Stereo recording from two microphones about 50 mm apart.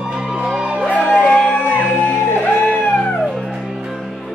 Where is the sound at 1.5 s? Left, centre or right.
Left.